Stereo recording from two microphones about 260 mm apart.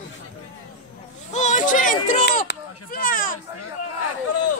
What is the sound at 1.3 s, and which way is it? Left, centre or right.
Speech, left.